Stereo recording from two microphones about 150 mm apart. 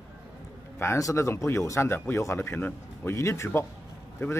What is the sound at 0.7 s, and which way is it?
Speech, 20° left (ahead or behind).